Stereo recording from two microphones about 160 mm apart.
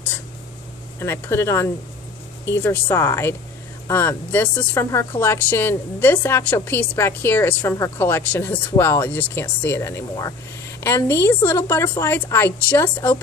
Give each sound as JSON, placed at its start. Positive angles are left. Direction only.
{"t": 0.9, "sound": "speech", "side_deg": 15}